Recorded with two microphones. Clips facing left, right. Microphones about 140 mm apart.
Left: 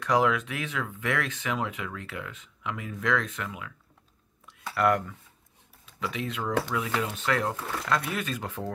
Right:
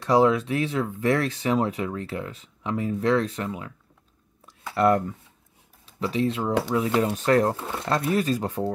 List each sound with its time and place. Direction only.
0.0 s speech: 35° right (ahead or behind)
4.7 s speech: 35° right (ahead or behind)
7.5 s speech: 25° right (ahead or behind)